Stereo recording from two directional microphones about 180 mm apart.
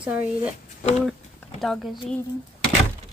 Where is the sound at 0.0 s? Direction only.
10° right (ahead or behind).